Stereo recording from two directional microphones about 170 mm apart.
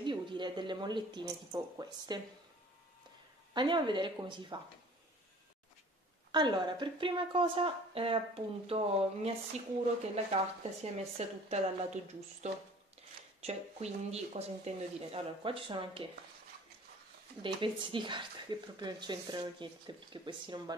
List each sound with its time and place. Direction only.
0.0 s speech: 25° right (ahead or behind)
3.5 s speech: 25° right (ahead or behind)
6.3 s a woman's voice: 25° right (ahead or behind)
17.4 s speech: 30° right (ahead or behind)